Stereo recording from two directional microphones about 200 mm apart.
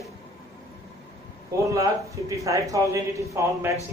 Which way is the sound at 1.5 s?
15° right (ahead or behind).